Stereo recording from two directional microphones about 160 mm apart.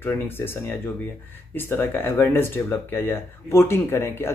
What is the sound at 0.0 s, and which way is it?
Speech, 15° left (ahead or behind).